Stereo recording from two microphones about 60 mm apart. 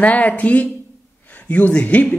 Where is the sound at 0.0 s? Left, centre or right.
Left.